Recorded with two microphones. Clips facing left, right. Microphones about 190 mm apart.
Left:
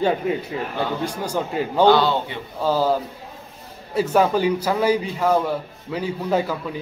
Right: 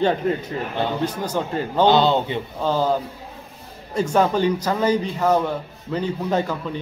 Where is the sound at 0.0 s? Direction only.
5° left (ahead or behind).